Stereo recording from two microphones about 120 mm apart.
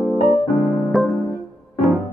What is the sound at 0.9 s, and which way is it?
Keyboard, centre (ahead or behind).